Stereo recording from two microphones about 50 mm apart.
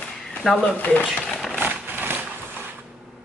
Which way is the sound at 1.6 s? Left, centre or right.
Right.